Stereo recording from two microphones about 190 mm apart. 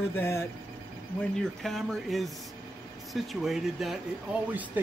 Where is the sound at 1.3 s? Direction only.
Centre (ahead or behind).